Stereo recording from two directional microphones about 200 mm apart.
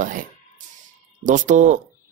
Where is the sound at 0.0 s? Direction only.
40° right (ahead or behind).